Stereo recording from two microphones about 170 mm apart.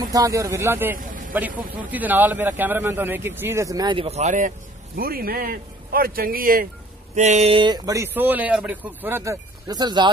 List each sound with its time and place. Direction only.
0.0 s speech: 20° right (ahead or behind)
0.9 s vehicle: 50° right (ahead or behind)
1.9 s speech: 10° right (ahead or behind); by 6.7 s 55° right (ahead or behind)
7.2 s speech: 40° right (ahead or behind); by 10.0 s 25° right (ahead or behind)